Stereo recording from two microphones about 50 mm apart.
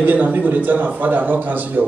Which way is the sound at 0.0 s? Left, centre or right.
Right.